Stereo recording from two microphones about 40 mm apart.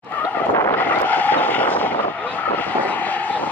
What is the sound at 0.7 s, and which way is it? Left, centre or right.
Vehicle, left.